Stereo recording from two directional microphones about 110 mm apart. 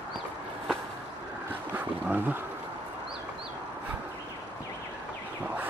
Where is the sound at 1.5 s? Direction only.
15° right (ahead or behind).